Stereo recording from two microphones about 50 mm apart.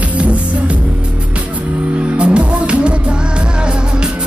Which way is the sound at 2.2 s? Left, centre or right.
Right.